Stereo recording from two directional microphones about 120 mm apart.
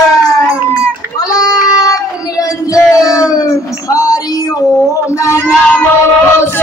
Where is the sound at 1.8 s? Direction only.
30° left (ahead or behind).